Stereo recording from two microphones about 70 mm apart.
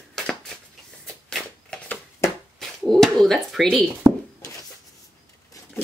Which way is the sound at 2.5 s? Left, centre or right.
Centre.